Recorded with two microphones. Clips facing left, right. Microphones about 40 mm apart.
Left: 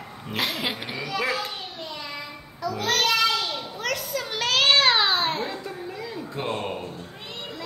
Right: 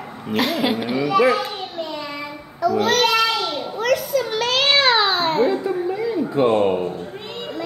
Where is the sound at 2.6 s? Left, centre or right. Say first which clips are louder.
Right 10 dB; centre.